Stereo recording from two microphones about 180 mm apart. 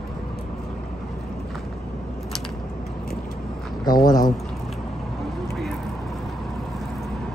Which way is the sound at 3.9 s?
20° left (ahead or behind).